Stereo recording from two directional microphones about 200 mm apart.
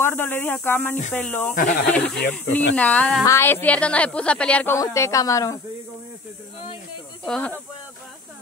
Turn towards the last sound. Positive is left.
turn(degrees=5)  # may be behind; listen again after turning